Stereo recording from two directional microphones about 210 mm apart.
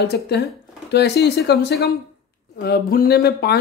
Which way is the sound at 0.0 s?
50° left (ahead or behind).